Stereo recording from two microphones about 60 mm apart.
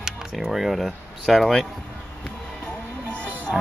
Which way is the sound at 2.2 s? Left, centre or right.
Centre.